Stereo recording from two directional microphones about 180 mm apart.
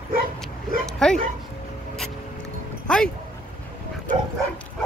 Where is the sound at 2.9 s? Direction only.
5° left (ahead or behind).